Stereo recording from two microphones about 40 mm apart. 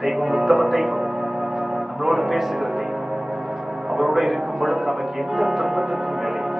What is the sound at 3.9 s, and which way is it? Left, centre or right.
Speech, centre.